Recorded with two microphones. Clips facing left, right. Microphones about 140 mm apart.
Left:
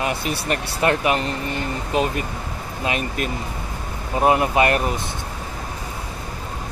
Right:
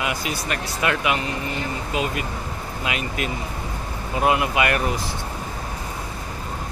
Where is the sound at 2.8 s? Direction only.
45° left (ahead or behind).